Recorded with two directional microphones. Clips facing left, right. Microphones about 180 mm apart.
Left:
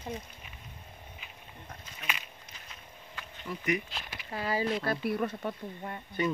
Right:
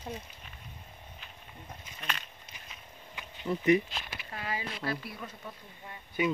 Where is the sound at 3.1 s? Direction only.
25° right (ahead or behind).